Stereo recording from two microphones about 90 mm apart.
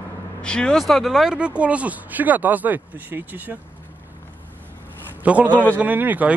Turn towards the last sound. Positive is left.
turn(degrees=-20)  # may be behind; listen again after turning